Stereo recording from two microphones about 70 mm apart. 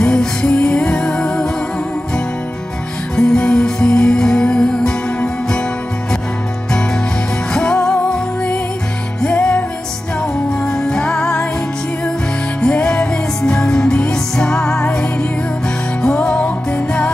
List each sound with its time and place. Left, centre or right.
0.0 s music: centre
3.2 s music: centre
7.5 s music: centre
10.6 s music: centre
12.7 s music: centre